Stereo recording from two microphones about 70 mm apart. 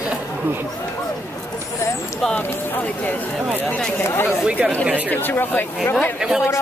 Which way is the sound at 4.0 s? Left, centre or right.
Left.